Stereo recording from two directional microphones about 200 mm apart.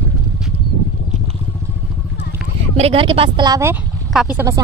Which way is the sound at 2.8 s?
30° right (ahead or behind).